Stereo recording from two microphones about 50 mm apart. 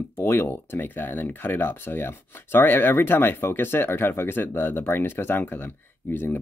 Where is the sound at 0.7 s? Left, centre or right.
Left.